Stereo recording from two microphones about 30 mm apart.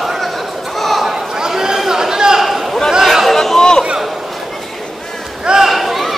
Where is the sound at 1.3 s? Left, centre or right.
Right.